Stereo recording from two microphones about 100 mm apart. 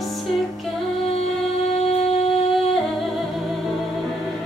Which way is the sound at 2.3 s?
Centre (ahead or behind).